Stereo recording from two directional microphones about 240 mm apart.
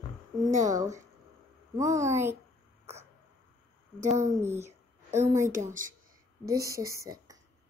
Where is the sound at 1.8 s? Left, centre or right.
Centre.